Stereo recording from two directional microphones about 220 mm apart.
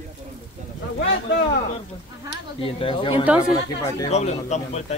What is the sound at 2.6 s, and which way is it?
Speech, 25° left (ahead or behind).